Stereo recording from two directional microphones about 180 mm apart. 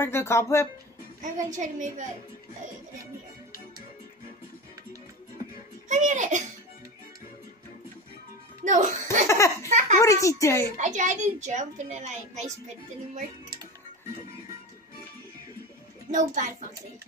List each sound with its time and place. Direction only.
0.0 s a child's voice: 15° left (ahead or behind)
1.2 s a woman's voice: 45° right (ahead or behind)
5.9 s a child's voice: 45° right (ahead or behind)
8.6 s a child's voice: 45° right (ahead or behind)
9.3 s a child's voice: 15° left (ahead or behind)
9.7 s a woman's voice: 40° right (ahead or behind)
9.9 s a child's voice: 15° left (ahead or behind)
10.8 s a child's voice: 40° right (ahead or behind)
16.1 s a woman's voice: 45° right (ahead or behind)